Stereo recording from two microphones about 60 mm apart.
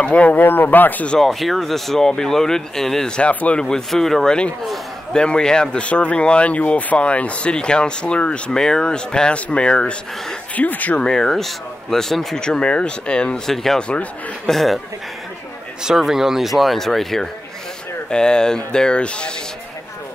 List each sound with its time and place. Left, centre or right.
0.0 s speech: left
1.2 s speech: centre
3.2 s a man's voice: left
3.6 s speech: centre
10.5 s a man's voice: left
11.0 s speech: centre
13.8 s a man's voice: centre
14.5 s speech: centre
15.8 s speech: centre